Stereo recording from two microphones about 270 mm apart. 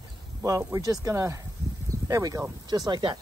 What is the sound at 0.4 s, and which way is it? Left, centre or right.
Speech, centre.